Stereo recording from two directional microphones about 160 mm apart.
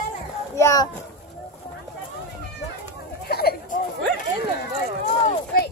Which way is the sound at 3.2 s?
75° left (ahead or behind).